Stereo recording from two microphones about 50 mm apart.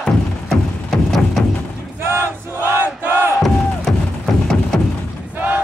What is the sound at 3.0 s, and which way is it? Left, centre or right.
Crowd, right.